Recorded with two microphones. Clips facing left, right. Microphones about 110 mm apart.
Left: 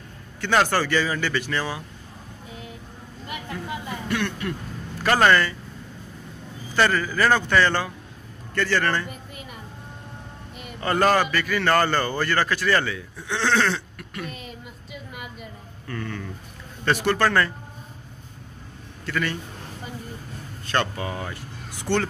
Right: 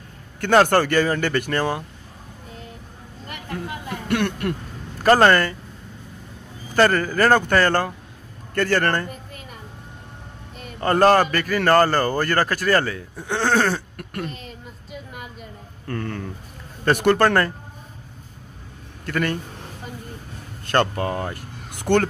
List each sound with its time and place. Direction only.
0.4 s a man's voice: 50° right (ahead or behind)
3.3 s vehicle: centre (ahead or behind)
3.9 s speech: 55° right (ahead or behind)
5.0 s a man's voice: 40° right (ahead or behind)
6.7 s a man's voice: 50° right (ahead or behind)
10.8 s a man's voice: 40° right (ahead or behind)
14.3 s a sound: 10° left (ahead or behind)
15.9 s a man's voice: 45° right (ahead or behind)
19.0 s a man's voice: 50° right (ahead or behind)
20.6 s speech: 50° right (ahead or behind)